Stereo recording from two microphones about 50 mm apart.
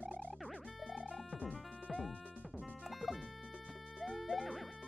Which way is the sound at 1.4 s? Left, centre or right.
Right.